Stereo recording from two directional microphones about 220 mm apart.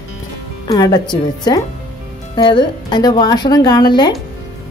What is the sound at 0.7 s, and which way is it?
A woman's voice, 20° left (ahead or behind).